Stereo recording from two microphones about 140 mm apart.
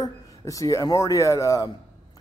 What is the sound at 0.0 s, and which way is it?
Speech, 25° left (ahead or behind).